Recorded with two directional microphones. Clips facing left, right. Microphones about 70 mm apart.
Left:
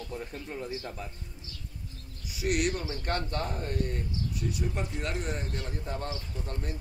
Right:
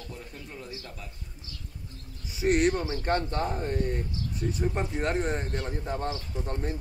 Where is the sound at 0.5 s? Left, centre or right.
Left.